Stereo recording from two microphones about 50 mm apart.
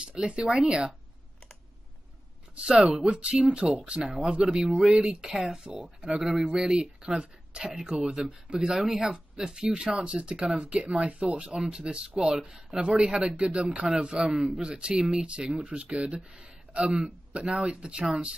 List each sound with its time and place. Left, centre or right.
0.0 s speech: centre
2.5 s speech: right
2.8 s speech: centre
3.1 s speech: right
12.7 s speech: right